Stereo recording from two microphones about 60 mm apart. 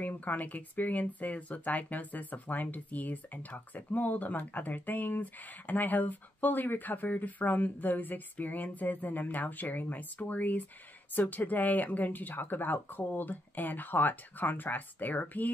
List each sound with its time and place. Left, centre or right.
0.0 s speech: left